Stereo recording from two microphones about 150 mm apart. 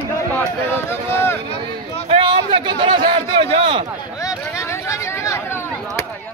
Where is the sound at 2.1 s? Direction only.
35° right (ahead or behind).